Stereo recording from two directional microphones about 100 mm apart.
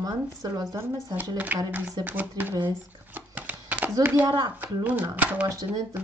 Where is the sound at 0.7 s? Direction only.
25° right (ahead or behind).